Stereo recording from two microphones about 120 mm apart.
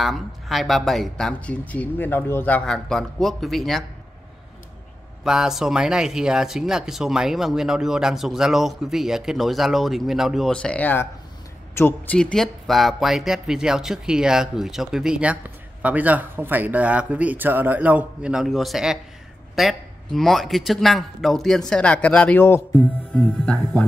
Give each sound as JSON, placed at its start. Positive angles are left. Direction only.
{"t": 0.0, "sound": "speech", "side_deg": 0}
{"t": 5.2, "sound": "speech", "side_deg": -5}
{"t": 12.2, "sound": "speech", "side_deg": 5}